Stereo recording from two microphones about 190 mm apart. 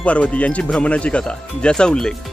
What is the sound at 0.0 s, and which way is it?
Speech, 5° left (ahead or behind).